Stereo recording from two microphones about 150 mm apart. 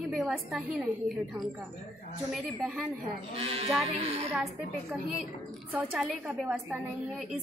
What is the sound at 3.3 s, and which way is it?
Speech, 40° right (ahead or behind).